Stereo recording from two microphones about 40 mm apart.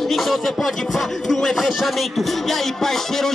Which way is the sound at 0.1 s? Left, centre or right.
Centre.